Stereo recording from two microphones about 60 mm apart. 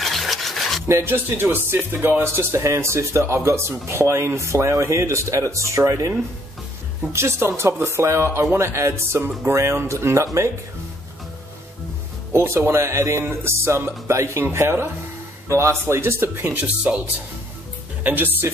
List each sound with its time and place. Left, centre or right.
0.0 s rub: centre
0.8 s speech: right
2.5 s speech: right
7.1 s speech: right
12.3 s speech: right
15.4 s speech: right
16.6 s speech: centre
18.0 s speech: right